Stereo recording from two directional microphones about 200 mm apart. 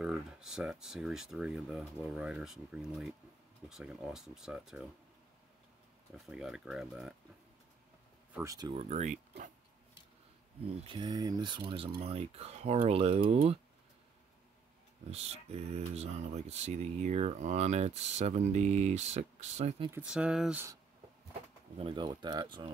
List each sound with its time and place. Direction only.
0.0 s speech: 5° right (ahead or behind)
6.1 s speech: centre (ahead or behind)
8.4 s speech: 20° right (ahead or behind)
8.7 s speech: 35° right (ahead or behind)
10.6 s speech: 30° right (ahead or behind)
15.0 s speech: 30° right (ahead or behind)
19.9 s speech: 5° right (ahead or behind)
21.7 s speech: 25° right (ahead or behind)